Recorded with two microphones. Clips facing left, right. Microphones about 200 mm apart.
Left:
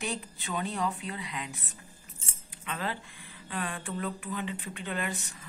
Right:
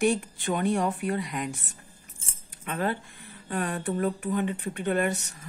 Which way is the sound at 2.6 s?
50° right (ahead or behind).